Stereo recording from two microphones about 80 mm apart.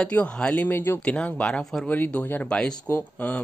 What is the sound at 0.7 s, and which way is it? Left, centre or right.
Speech, left.